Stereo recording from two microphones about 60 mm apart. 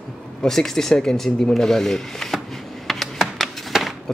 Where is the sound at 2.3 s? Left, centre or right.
Centre.